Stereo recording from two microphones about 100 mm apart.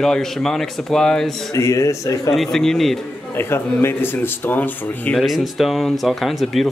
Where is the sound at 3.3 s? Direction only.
25° left (ahead or behind).